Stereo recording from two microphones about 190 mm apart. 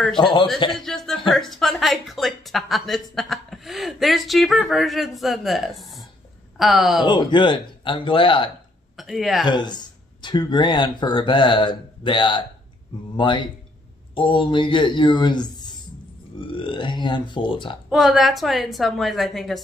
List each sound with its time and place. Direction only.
0.2 s speech: 25° left (ahead or behind)
0.7 s a woman's voice: centre (ahead or behind)
7.1 s speech: 25° left (ahead or behind)
8.9 s speech: centre (ahead or behind)
9.5 s speech: 25° left (ahead or behind)
17.8 s a woman's voice: centre (ahead or behind)